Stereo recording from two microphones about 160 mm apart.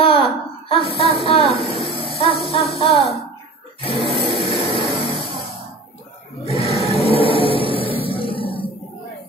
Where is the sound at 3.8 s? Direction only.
35° left (ahead or behind).